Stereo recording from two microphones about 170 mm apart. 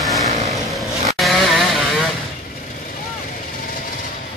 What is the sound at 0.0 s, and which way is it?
Vehicle, centre (ahead or behind).